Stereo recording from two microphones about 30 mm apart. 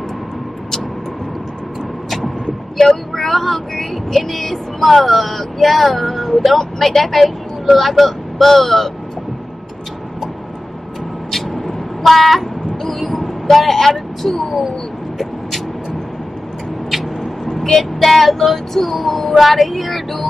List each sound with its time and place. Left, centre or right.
2.8 s speech: centre
12.0 s a sound: centre
13.1 s vehicle: centre
17.6 s speech: centre